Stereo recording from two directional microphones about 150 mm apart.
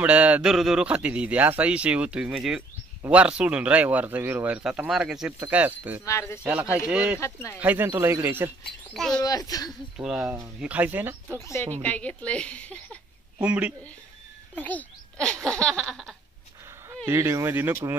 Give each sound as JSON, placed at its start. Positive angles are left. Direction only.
{"t": 0.0, "sound": "a man's voice", "side_deg": -10}
{"t": 6.0, "sound": "speech", "side_deg": 20}
{"t": 6.4, "sound": "a man's voice", "side_deg": -10}
{"t": 7.2, "sound": "speech", "side_deg": 20}
{"t": 7.5, "sound": "a man's voice", "side_deg": -10}
{"t": 8.9, "sound": "speech", "side_deg": 5}
{"t": 9.2, "sound": "speech", "side_deg": 25}
{"t": 9.9, "sound": "a man's voice", "side_deg": -5}
{"t": 11.3, "sound": "speech", "side_deg": 20}
{"t": 13.4, "sound": "a man's voice", "side_deg": -10}
{"t": 14.5, "sound": "a sound", "side_deg": 10}
{"t": 17.0, "sound": "a man's voice", "side_deg": -20}